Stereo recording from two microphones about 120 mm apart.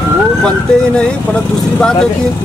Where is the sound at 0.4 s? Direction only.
5° left (ahead or behind).